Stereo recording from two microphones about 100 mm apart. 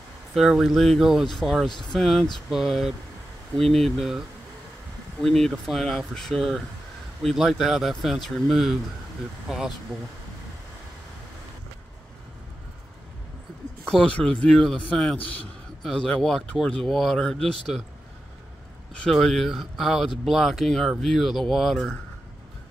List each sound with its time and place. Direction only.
0.3 s speech: centre (ahead or behind)
5.2 s speech: 5° left (ahead or behind)
13.8 s speech: 10° left (ahead or behind)
19.0 s speech: 5° left (ahead or behind)